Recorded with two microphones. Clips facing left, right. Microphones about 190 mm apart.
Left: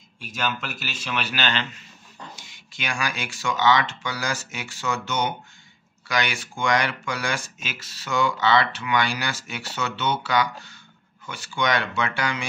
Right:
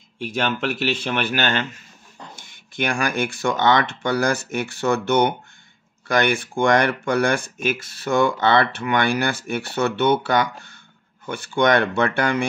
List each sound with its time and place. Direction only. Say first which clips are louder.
0.2 s speech: right 6 dB; 60° right (ahead or behind)